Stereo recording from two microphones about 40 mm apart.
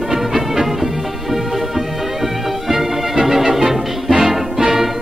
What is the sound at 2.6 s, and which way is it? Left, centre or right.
Music, centre.